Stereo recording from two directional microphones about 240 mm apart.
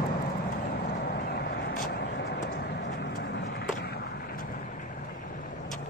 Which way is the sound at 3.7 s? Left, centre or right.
Left.